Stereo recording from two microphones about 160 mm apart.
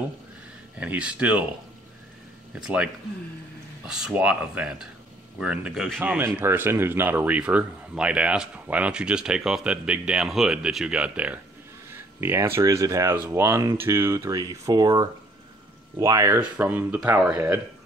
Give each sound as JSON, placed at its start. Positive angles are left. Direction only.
{"t": 0.7, "sound": "speech", "side_deg": -10}
{"t": 2.5, "sound": "speech", "side_deg": -5}
{"t": 16.3, "sound": "speech", "side_deg": -10}